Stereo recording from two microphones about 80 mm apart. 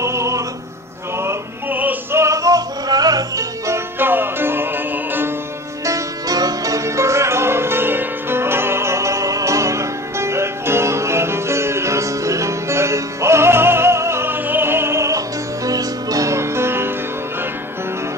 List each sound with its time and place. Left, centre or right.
0.0 s music: right
1.2 s music: right
2.1 s music: right
4.0 s music: right
5.9 s music: right